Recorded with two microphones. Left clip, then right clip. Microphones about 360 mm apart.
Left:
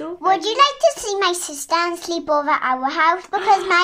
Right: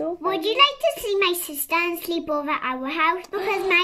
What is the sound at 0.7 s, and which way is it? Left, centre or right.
Speech, left.